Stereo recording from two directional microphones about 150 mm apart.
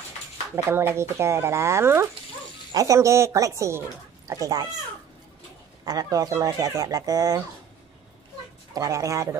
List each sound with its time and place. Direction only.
0.7 s speech: 15° right (ahead or behind)
5.9 s speech: 25° right (ahead or behind)
8.7 s speech: 20° right (ahead or behind)